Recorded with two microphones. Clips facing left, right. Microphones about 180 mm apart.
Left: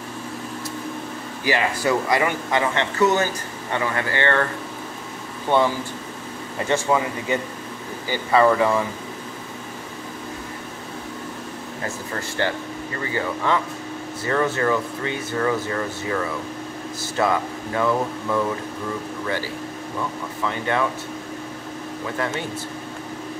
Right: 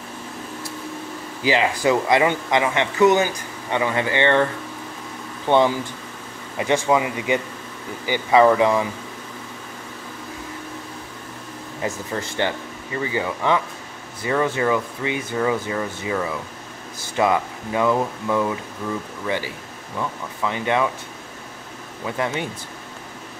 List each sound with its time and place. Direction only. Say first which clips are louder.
1.4 s speech: right 3 dB; 20° right (ahead or behind)
6.6 s speech: right 2 dB; 15° right (ahead or behind)
11.8 s speech: right 4 dB; 20° right (ahead or behind)
22.0 s speech: right 2 dB; 15° right (ahead or behind)